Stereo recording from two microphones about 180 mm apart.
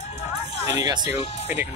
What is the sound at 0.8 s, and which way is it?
Speech, 25° right (ahead or behind).